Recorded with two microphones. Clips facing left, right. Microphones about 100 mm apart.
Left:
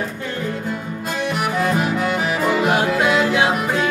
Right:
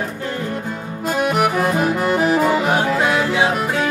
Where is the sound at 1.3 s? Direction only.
50° right (ahead or behind).